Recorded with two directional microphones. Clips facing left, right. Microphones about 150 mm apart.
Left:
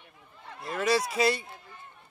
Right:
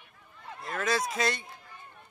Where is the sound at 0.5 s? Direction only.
5° left (ahead or behind).